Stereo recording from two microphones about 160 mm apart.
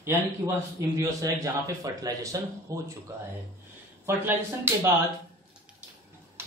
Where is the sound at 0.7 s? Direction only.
20° right (ahead or behind).